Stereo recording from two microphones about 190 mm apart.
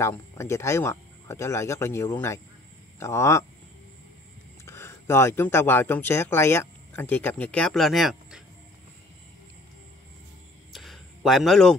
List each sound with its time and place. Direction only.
0.0 s speech: 15° left (ahead or behind)
4.6 s speech: 15° left (ahead or behind)
10.7 s a sound: centre (ahead or behind)